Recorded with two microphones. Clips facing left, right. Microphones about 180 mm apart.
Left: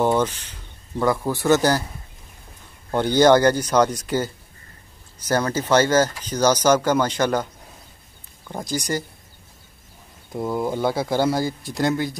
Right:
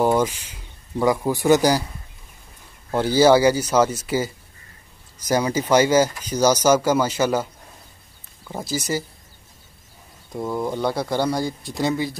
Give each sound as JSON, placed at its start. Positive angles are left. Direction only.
{"t": 0.0, "sound": "speech", "side_deg": -10}
{"t": 2.9, "sound": "speech", "side_deg": -5}
{"t": 8.5, "sound": "speech", "side_deg": -5}
{"t": 10.3, "sound": "speech", "side_deg": 5}